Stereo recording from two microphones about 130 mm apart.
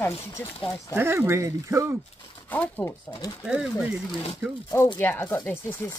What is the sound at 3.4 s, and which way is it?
Speech, 5° right (ahead or behind).